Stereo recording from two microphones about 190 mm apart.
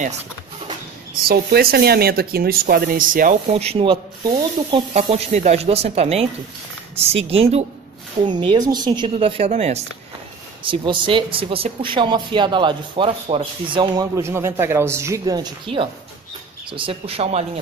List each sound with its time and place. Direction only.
1.2 s speech: 55° right (ahead or behind)
3.4 s speech: 35° right (ahead or behind)